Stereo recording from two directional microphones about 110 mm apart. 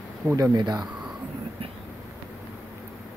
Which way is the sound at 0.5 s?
40° right (ahead or behind).